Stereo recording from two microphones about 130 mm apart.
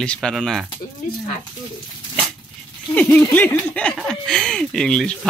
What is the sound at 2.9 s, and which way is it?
Speech, 10° left (ahead or behind).